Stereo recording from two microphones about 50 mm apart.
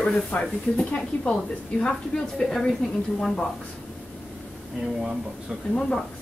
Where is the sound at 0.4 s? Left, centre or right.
Centre.